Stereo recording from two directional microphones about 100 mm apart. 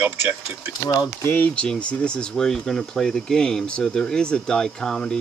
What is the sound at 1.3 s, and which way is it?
Speech, 15° left (ahead or behind).